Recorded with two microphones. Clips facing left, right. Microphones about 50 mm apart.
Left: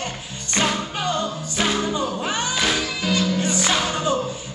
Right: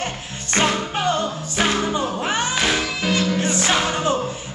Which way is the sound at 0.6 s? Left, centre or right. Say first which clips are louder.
Right 2 dB; right.